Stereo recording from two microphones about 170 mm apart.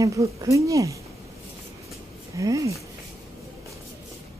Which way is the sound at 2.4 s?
20° right (ahead or behind).